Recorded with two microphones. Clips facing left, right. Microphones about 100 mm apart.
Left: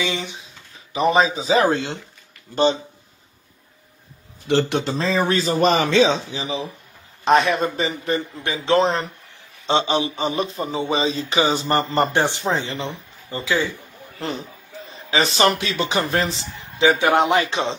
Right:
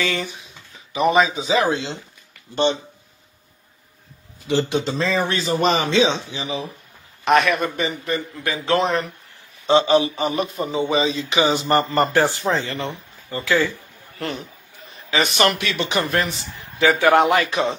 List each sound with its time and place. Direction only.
0.0 s speech: 15° left (ahead or behind)
0.9 s speech: 35° left (ahead or behind); by 2.0 s 50° left (ahead or behind)
2.5 s speech: 35° left (ahead or behind)
4.5 s a man's voice: 60° left (ahead or behind)
4.9 s speech: 35° left (ahead or behind)
11.9 s speech: 20° left (ahead or behind)
14.9 s a sound: 30° left (ahead or behind)
15.5 s a man's voice: 30° left (ahead or behind)